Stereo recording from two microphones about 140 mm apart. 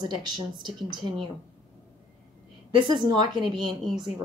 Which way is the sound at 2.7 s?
35° right (ahead or behind).